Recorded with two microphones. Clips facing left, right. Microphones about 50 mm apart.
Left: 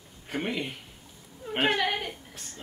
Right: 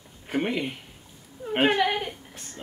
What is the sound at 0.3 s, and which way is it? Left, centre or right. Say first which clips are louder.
A woman's voice: right 4 dB; centre.